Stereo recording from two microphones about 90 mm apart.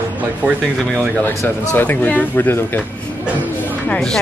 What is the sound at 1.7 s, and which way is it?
Speech, 20° left (ahead or behind).